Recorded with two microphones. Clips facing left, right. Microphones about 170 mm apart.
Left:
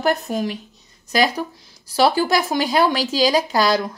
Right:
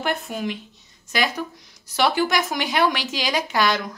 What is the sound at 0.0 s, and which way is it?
A woman's voice, 40° left (ahead or behind).